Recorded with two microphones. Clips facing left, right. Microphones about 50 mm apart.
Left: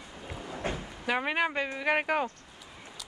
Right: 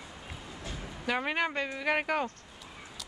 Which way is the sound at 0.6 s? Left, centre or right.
Left.